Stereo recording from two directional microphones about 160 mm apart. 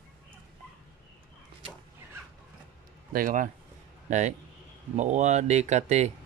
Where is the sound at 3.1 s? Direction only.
60° right (ahead or behind).